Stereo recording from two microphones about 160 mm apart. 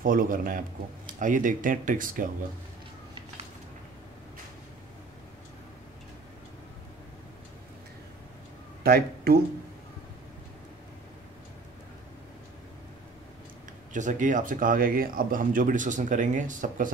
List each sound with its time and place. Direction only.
0.0 s speech: 60° right (ahead or behind)
8.8 s speech: 75° right (ahead or behind)
13.9 s speech: 50° right (ahead or behind)